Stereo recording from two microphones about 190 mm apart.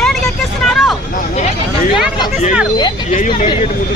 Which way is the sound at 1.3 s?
40° left (ahead or behind).